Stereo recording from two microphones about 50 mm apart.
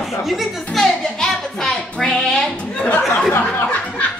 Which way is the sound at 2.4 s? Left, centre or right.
Centre.